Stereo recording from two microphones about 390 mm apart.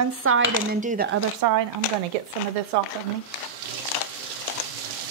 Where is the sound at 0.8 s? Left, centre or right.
Centre.